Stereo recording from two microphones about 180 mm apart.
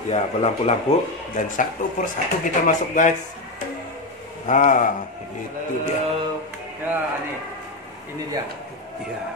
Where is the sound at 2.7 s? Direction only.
45° left (ahead or behind).